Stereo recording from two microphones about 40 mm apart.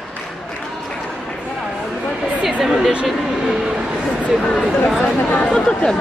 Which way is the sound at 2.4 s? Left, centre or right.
Centre.